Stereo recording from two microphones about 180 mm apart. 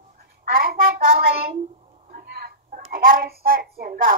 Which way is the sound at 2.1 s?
55° right (ahead or behind).